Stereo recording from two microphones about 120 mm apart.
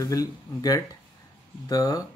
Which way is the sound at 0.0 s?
30° left (ahead or behind).